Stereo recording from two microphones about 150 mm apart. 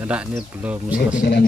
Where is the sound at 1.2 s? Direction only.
90° left.